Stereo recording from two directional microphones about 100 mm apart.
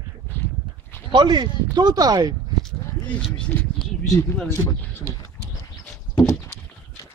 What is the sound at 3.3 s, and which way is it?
Speech, 10° left (ahead or behind).